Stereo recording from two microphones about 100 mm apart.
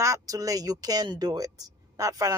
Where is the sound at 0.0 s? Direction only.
35° right (ahead or behind).